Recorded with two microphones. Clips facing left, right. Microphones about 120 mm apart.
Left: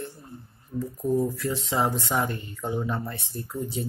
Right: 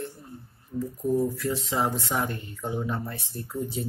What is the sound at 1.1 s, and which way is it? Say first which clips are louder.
Speech: even; centre (ahead or behind).